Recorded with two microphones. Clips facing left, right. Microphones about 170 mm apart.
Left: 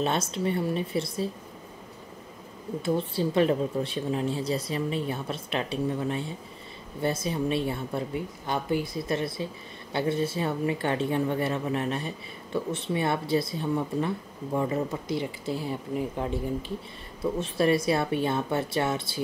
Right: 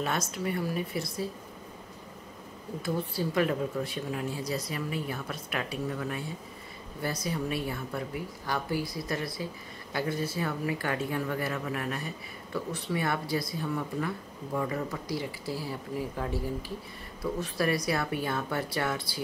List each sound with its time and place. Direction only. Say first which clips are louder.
0.0 s speech: left 4 dB; 25° left (ahead or behind)
2.8 s speech: left 4 dB; 25° left (ahead or behind)